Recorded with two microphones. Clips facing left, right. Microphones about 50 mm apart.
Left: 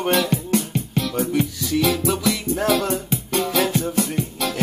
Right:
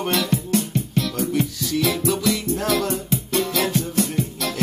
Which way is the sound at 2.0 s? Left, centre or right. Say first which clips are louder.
Even; centre.